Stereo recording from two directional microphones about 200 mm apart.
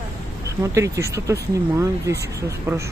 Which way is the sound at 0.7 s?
15° right (ahead or behind).